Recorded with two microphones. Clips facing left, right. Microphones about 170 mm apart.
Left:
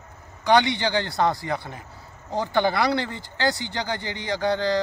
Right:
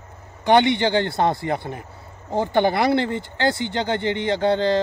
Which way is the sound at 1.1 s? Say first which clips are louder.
Right 2 dB; 25° right (ahead or behind).